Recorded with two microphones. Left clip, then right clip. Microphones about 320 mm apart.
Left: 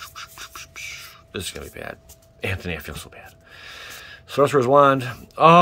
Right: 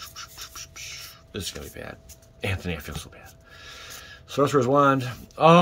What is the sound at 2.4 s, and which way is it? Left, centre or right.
Speech, centre.